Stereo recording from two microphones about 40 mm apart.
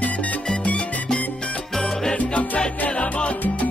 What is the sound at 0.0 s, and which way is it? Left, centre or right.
Music, left.